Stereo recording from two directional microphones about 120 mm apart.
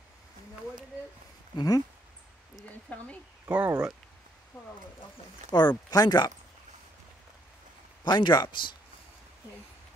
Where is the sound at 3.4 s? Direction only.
15° right (ahead or behind).